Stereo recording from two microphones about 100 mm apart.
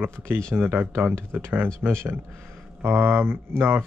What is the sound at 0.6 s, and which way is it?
Speech, 20° right (ahead or behind).